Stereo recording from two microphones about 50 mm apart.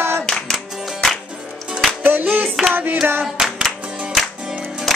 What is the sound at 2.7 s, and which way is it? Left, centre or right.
Music, right.